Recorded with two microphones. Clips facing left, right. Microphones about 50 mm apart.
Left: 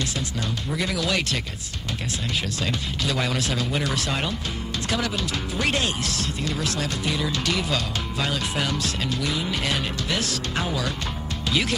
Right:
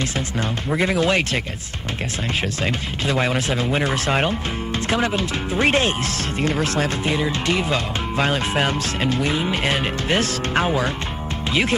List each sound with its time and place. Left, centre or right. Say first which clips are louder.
0.7 s speech: right 7 dB; right
2.6 s speech: right 4 dB; right